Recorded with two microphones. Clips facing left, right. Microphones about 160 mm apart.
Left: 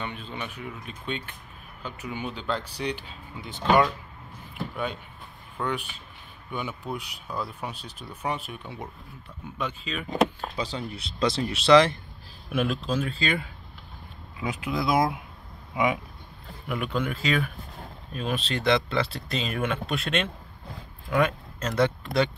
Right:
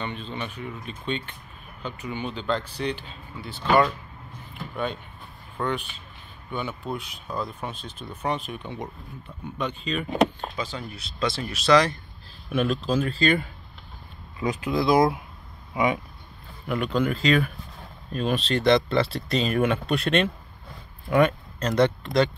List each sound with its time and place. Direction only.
0.0 s speech: 10° left (ahead or behind)
5.6 s speech: 10° left (ahead or behind)
10.6 s speech: 30° left (ahead or behind)
12.4 s speech: 5° left (ahead or behind)